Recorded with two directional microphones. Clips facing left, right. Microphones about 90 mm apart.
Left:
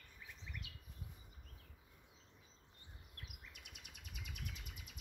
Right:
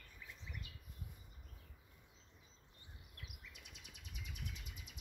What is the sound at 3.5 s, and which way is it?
Bird, 55° left (ahead or behind).